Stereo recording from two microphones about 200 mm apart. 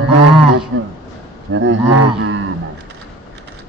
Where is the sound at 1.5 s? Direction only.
70° right (ahead or behind).